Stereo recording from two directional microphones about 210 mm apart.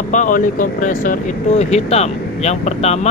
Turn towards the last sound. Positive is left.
turn(degrees=30)  # may be behind; listen again after turning